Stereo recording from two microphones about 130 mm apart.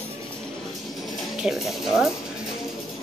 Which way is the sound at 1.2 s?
Centre (ahead or behind).